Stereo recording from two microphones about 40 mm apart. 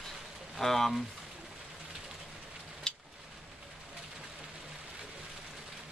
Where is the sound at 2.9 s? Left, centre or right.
Centre.